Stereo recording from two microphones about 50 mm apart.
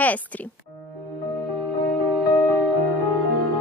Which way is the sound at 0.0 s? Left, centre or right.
Left.